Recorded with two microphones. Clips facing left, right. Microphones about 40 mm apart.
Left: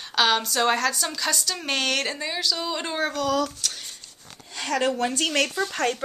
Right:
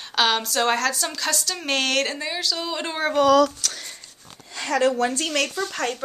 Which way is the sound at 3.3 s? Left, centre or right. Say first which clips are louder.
Right 10 dB; right.